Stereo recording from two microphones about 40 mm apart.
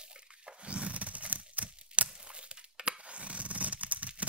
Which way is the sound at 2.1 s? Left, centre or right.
Right.